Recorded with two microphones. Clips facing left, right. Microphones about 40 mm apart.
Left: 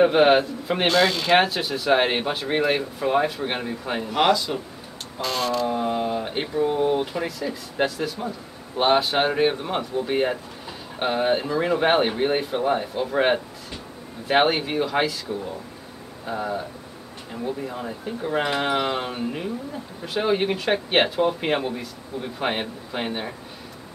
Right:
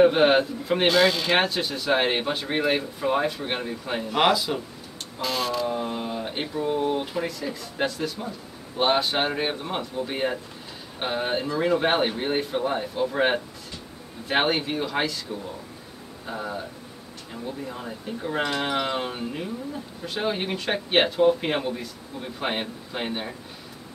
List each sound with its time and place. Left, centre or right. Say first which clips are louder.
0.0 s speech: left 1 dB; centre
16.3 s speech: left 4 dB; centre